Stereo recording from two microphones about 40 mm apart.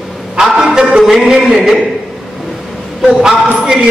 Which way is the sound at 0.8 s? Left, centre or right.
Centre.